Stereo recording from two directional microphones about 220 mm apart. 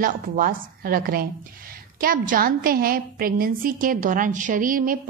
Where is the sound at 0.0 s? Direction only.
40° right (ahead or behind).